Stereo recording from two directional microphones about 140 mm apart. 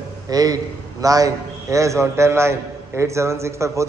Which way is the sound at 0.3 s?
25° right (ahead or behind).